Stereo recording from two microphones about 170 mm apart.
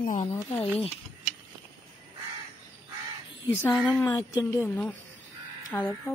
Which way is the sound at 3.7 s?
5° left (ahead or behind).